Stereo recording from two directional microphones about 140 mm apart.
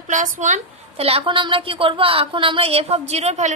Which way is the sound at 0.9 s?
45° right (ahead or behind).